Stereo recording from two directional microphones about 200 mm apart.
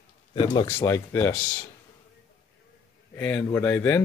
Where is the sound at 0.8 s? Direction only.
15° left (ahead or behind).